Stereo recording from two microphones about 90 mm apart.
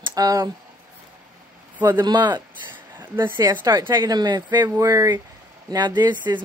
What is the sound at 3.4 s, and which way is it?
Speech, 50° right (ahead or behind).